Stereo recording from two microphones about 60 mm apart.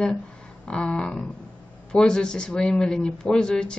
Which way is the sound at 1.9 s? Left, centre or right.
Centre.